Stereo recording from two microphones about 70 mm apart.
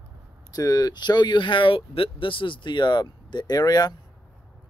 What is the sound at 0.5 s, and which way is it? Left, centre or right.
Speech, left.